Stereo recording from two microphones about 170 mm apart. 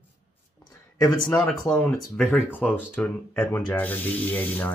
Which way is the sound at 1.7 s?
10° left (ahead or behind).